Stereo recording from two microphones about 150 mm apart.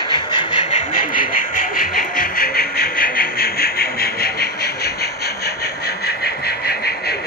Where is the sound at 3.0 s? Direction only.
75° left (ahead or behind).